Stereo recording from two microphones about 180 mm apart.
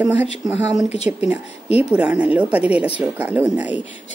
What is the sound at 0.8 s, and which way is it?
Speech, 35° left (ahead or behind).